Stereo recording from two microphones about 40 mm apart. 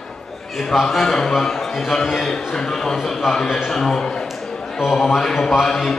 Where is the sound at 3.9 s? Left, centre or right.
Centre.